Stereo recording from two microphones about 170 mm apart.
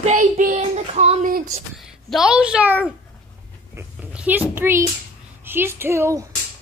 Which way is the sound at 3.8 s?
10° right (ahead or behind).